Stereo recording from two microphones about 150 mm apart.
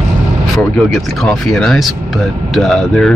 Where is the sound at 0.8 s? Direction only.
5° left (ahead or behind).